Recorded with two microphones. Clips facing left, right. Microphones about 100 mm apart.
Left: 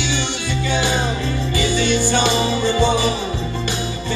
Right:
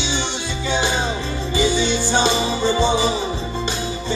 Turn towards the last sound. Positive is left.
turn(degrees=-20)  # may be behind; listen again after turning